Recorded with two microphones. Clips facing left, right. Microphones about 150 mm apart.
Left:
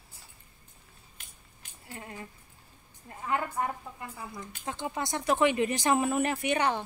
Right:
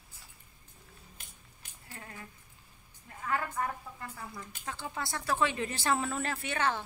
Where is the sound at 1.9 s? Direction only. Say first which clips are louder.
Left 5 dB; 25° left (ahead or behind).